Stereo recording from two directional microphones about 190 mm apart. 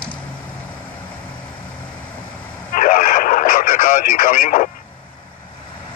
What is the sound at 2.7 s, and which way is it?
Radio, 45° left (ahead or behind).